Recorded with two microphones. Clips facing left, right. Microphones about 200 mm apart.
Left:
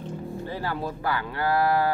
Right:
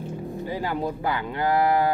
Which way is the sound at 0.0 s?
15° right (ahead or behind).